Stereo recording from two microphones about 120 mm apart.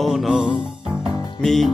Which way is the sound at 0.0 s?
5° right (ahead or behind).